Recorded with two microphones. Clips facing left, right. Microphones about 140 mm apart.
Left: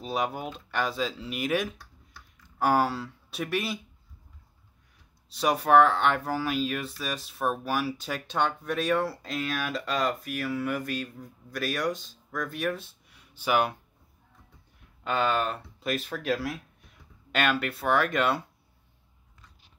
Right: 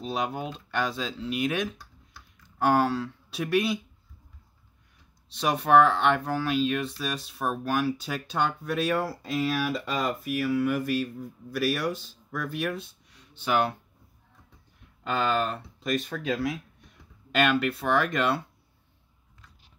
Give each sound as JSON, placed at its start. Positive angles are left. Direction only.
{"t": 0.0, "sound": "speech", "side_deg": 5}
{"t": 5.3, "sound": "speech", "side_deg": 0}
{"t": 15.0, "sound": "speech", "side_deg": 0}